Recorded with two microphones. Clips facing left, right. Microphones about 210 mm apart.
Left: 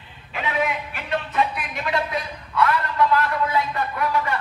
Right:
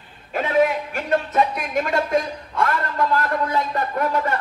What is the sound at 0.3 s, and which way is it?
A man's voice, 45° right (ahead or behind).